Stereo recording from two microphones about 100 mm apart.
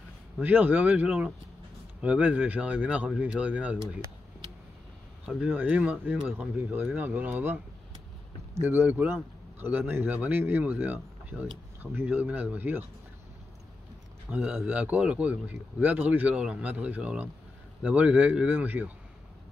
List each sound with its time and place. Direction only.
0.4 s a man's voice: 15° right (ahead or behind)
5.2 s a man's voice: 10° right (ahead or behind)
8.6 s a man's voice: 20° right (ahead or behind)
14.3 s a man's voice: 15° right (ahead or behind)